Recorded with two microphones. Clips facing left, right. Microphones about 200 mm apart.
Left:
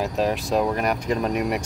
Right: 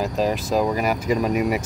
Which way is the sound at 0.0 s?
Centre (ahead or behind).